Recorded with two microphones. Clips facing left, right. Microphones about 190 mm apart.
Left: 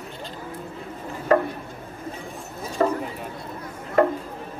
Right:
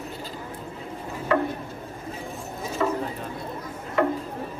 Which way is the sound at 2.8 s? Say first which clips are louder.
Left 4 dB; 45° left (ahead or behind).